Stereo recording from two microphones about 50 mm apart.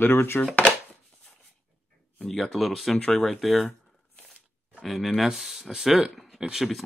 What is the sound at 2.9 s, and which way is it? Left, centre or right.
Speech, centre.